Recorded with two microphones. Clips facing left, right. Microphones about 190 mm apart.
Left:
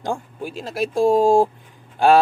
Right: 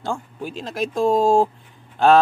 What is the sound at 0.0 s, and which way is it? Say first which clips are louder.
Speech: left 1 dB; 15° left (ahead or behind).